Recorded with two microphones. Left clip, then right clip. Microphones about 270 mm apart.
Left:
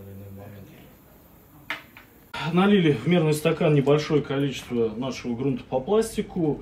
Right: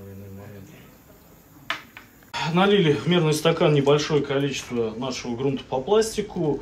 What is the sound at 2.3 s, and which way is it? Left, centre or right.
Speech, centre.